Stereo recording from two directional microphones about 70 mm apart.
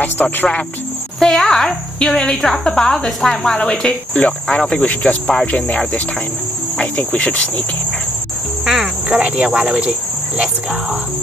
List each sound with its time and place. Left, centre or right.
0.0 s speech: left
1.2 s a woman's voice: centre
8.6 s cricket: centre